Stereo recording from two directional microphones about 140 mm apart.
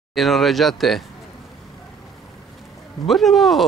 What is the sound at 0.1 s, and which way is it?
Speech, centre (ahead or behind).